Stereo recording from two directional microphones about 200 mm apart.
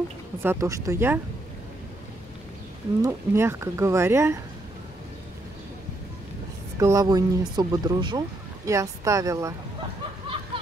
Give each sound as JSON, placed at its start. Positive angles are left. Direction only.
{"t": 0.4, "sound": "speech", "side_deg": -15}
{"t": 3.0, "sound": "speech", "side_deg": -15}
{"t": 6.8, "sound": "speech", "side_deg": -15}
{"t": 10.5, "sound": "a sound", "side_deg": -25}